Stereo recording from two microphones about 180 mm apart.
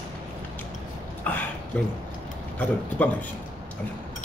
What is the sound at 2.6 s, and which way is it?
Speech, 10° left (ahead or behind).